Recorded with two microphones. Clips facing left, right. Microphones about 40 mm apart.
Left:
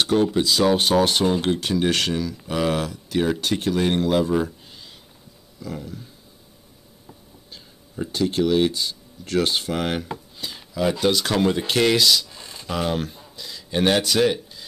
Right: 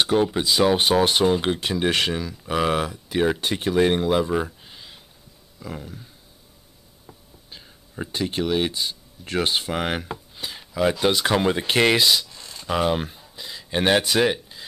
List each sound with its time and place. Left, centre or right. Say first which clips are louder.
0.0 s speech: left 1 dB; centre
7.5 s speech: left 2 dB; right
12.3 s a sound: left 1 dB; centre
12.6 s speech: right 2 dB; centre